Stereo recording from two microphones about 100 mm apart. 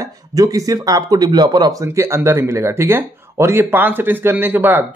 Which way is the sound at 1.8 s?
30° right (ahead or behind).